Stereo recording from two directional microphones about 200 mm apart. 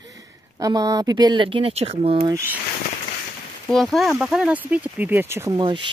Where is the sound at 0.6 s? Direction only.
20° right (ahead or behind).